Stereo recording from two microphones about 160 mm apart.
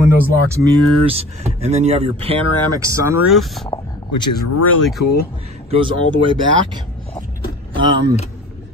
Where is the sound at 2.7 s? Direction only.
20° right (ahead or behind).